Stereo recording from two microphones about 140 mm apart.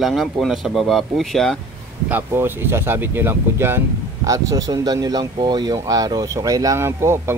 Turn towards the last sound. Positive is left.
turn(degrees=-20)  # may be behind; listen again after turning